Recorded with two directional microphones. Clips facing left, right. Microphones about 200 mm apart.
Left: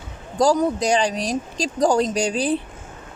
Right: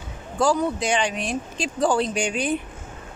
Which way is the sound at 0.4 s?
40° left (ahead or behind).